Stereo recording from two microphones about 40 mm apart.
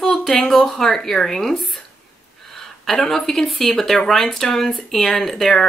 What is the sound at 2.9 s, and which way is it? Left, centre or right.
Speech, centre.